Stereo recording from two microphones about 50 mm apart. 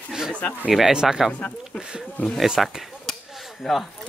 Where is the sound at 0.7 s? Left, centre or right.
Centre.